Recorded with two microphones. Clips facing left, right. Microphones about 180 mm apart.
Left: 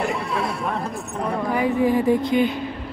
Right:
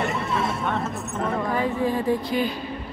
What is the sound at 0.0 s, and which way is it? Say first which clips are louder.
Chatter: left 1 dB; centre (ahead or behind).